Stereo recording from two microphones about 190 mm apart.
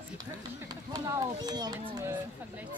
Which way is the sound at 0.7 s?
20° right (ahead or behind).